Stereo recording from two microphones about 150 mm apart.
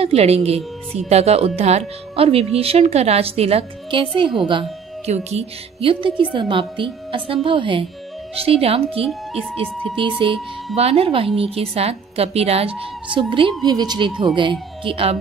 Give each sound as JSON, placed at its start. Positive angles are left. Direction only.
{"t": 0.0, "sound": "a woman's voice", "side_deg": -45}
{"t": 4.5, "sound": "music", "side_deg": -35}
{"t": 5.1, "sound": "a woman's voice", "side_deg": -45}